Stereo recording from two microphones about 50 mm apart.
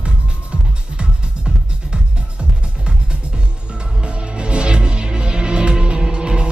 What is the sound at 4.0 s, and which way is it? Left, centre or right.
Music, right.